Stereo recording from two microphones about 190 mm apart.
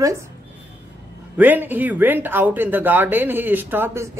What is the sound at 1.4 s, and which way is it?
Speech, 10° right (ahead or behind).